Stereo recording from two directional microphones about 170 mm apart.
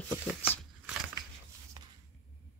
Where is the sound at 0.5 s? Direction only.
5° right (ahead or behind).